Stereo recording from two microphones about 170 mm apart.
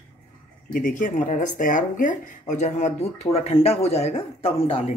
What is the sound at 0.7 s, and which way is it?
Speech, 50° left (ahead or behind).